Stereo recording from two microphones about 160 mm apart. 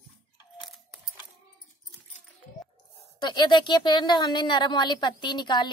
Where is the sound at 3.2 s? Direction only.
30° left (ahead or behind).